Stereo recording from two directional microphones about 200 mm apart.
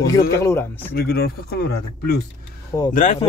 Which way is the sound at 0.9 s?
50° left (ahead or behind).